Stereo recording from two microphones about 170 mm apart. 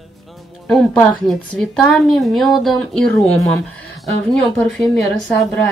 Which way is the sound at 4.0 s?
5° left (ahead or behind).